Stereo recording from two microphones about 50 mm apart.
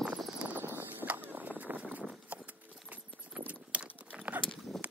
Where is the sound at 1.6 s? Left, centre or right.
Right.